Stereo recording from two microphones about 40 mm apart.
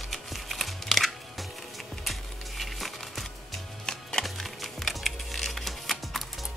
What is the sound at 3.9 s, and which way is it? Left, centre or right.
Music, centre.